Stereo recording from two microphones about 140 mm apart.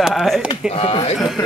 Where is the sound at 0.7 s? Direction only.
45° left (ahead or behind).